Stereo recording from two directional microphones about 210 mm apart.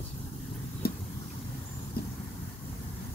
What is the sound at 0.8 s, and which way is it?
Vehicle, 45° left (ahead or behind).